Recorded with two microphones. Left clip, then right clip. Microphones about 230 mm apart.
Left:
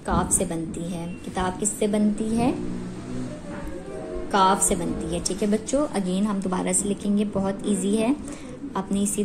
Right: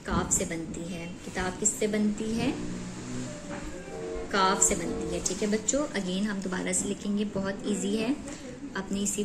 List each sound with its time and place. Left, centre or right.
0.1 s a woman's voice: left
4.3 s a woman's voice: left